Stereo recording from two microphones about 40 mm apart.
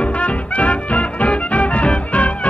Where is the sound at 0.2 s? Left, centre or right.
Left.